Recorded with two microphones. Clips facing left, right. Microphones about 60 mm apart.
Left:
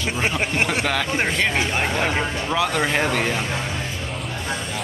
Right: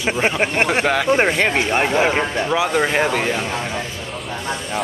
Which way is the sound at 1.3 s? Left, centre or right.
Right.